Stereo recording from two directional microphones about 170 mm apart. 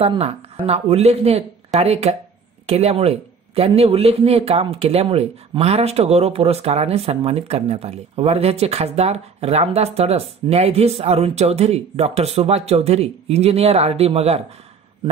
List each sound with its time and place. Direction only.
0.0 s a man's voice: 35° right (ahead or behind)